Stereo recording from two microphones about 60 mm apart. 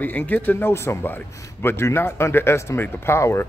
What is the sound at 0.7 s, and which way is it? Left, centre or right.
A man's voice, left.